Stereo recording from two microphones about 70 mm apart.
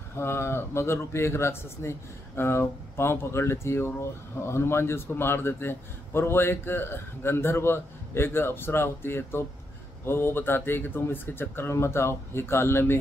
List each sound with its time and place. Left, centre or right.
0.1 s speech: left